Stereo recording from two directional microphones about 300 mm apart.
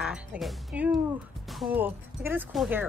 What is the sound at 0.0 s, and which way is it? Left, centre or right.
Speech, centre.